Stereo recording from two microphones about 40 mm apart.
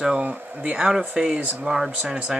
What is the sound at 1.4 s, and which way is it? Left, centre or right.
Speech, right.